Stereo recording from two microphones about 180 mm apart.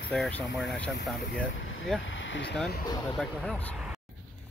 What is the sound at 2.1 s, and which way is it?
Speech, 90° left.